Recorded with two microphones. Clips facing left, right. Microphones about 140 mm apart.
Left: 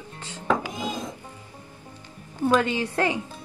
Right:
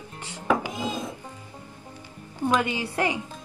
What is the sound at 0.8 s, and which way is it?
Speech, 15° left (ahead or behind).